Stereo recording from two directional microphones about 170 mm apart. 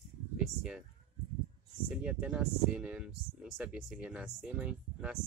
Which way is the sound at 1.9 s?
5° right (ahead or behind).